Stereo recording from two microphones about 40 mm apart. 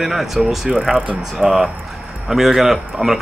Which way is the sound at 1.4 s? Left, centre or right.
Centre.